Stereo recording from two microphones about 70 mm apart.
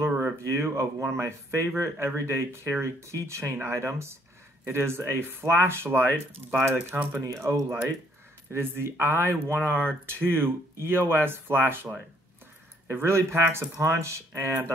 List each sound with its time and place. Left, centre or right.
0.2 s speech: right